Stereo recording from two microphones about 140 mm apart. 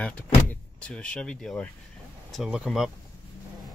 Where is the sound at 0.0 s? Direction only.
10° left (ahead or behind).